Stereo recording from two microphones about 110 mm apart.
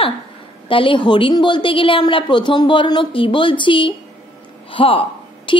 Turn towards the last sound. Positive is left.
turn(degrees=50)  # may be behind; listen again after turning